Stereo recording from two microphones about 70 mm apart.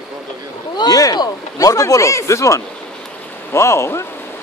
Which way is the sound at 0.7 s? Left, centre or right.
Left.